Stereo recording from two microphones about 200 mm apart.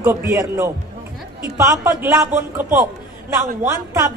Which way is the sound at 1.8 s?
15° right (ahead or behind).